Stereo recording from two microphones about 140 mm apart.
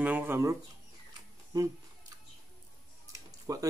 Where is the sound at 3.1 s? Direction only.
25° right (ahead or behind).